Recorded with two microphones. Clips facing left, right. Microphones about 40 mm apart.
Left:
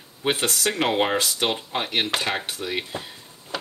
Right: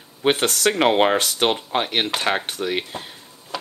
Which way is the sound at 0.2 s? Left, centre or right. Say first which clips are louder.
Right 5 dB; right.